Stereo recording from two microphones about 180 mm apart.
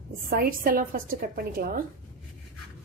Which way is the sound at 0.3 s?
55° right (ahead or behind).